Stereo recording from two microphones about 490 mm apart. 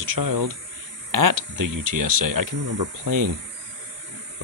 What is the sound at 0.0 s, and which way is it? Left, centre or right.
Speech, right.